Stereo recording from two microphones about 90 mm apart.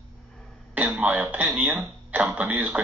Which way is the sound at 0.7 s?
15° right (ahead or behind).